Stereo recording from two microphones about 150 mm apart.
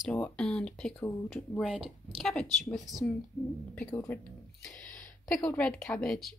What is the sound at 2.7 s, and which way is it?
Speech, centre (ahead or behind).